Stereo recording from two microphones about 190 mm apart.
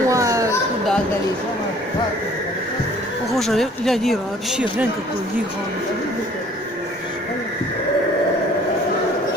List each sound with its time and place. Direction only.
0.0 s children playing: 15° right (ahead or behind)
3.3 s speech: centre (ahead or behind)